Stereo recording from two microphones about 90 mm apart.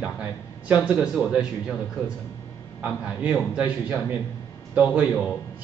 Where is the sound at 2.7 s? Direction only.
10° right (ahead or behind).